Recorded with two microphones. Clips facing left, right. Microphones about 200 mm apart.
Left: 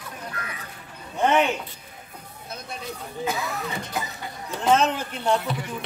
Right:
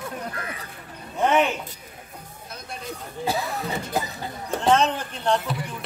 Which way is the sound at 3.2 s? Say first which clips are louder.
Right 2 dB; 35° right (ahead or behind).